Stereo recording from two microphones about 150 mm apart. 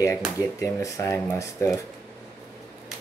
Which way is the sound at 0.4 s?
20° left (ahead or behind).